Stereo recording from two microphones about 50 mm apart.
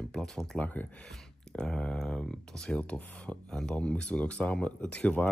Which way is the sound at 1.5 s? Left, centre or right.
Centre.